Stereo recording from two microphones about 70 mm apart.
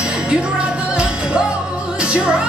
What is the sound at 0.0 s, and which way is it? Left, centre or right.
Music, centre.